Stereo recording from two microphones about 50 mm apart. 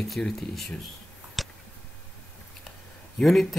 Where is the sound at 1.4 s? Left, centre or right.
Centre.